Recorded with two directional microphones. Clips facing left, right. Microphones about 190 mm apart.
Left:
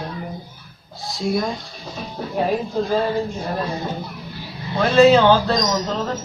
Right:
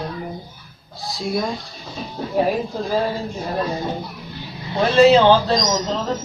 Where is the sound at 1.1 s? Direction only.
Centre (ahead or behind).